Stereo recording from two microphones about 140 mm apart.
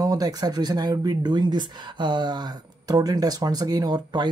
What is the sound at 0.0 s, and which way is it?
Speech, 25° right (ahead or behind).